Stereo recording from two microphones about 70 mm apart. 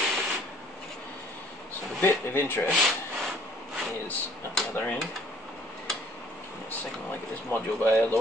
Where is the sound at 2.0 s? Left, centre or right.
Left.